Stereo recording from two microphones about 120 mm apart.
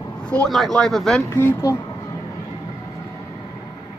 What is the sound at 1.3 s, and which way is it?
Speech, 20° left (ahead or behind).